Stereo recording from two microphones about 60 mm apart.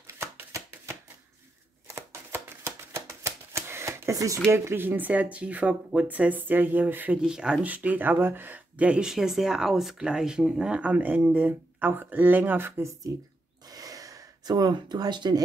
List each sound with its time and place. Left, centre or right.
0.0 s shuffling cards: right
2.3 s shuffling cards: right
4.5 s speech: right
7.2 s speech: centre
7.6 s speech: right
8.7 s speech: right
9.0 s speech: centre; by 12.8 s right
13.1 s speech: right
13.7 s gasp: right